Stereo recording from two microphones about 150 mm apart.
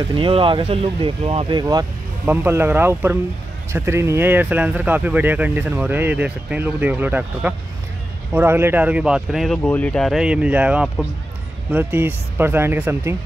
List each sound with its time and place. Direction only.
0.1 s speech: 35° right (ahead or behind)
1.6 s speech: 25° right (ahead or behind)
2.2 s speech: 15° right (ahead or behind)
9.6 s speech: 10° left (ahead or behind); by 13.1 s 15° right (ahead or behind)